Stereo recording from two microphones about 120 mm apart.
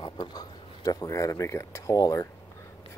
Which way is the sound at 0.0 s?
35° left (ahead or behind).